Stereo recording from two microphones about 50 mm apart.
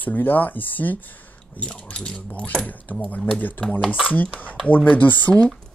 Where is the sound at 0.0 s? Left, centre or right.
Left.